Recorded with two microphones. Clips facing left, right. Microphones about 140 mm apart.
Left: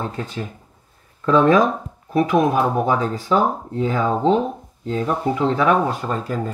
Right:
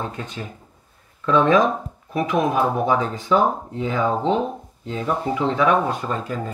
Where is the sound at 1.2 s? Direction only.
40° left (ahead or behind).